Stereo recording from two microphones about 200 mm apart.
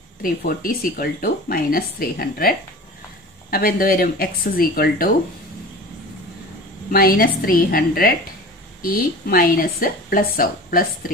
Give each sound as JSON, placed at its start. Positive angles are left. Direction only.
{"t": 0.2, "sound": "speech", "side_deg": 45}
{"t": 6.9, "sound": "speech", "side_deg": 45}